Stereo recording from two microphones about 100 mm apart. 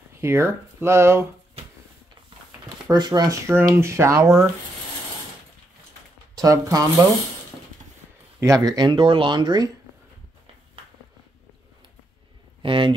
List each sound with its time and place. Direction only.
0.2 s speech: 25° right (ahead or behind)
2.9 s speech: 45° right (ahead or behind)
3.7 s speech: 25° right (ahead or behind)
6.3 s speech: 40° right (ahead or behind)
8.4 s speech: 35° right (ahead or behind)
12.6 s a sound: 55° right (ahead or behind)